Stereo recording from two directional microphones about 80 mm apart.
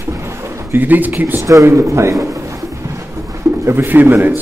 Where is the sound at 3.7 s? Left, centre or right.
Right.